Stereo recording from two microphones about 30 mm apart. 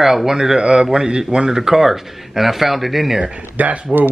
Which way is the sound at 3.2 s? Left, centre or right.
Right.